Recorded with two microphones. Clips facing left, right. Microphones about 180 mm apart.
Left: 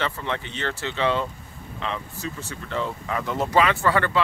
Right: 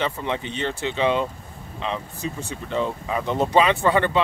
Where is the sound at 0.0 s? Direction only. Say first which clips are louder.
Right 2 dB; 15° right (ahead or behind).